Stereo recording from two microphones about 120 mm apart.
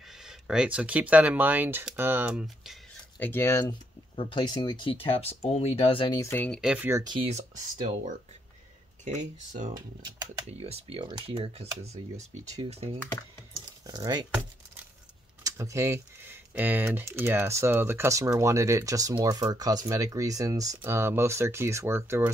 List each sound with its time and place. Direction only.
0.1 s speech: 5° right (ahead or behind)
2.4 s a sound: centre (ahead or behind)
3.2 s speech: 20° left (ahead or behind)
4.1 s speech: 45° left (ahead or behind)
6.0 s speech: 25° left (ahead or behind)
6.6 s speech: 10° right (ahead or behind)
7.2 s speech: 80° right
10.6 s speech: 55° right (ahead or behind)
11.1 s speech: 40° right (ahead or behind)
11.3 s speech: 55° right (ahead or behind)
13.8 s speech: 35° right (ahead or behind)
15.4 s speech: 25° right (ahead or behind)